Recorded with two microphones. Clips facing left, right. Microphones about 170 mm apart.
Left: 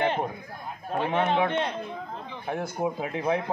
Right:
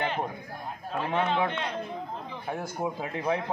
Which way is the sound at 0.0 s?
20° left (ahead or behind).